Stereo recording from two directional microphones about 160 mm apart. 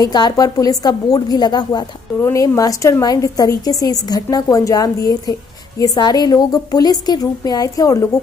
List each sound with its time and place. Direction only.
0.0 s a woman's voice: 25° left (ahead or behind)